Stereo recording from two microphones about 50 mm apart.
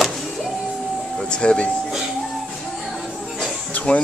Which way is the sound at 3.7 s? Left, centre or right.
Left.